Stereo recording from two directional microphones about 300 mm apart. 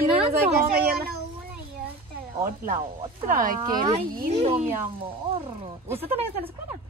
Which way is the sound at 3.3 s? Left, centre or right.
Right.